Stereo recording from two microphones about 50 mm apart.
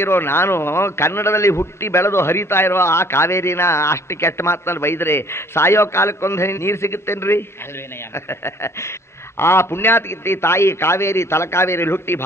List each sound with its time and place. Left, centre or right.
0.0 s a man's voice: left